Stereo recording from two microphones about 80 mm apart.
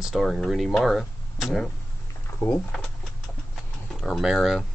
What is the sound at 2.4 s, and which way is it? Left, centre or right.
Speech, left.